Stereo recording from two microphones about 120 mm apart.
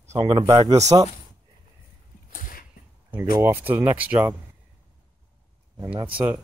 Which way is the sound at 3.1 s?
15° right (ahead or behind).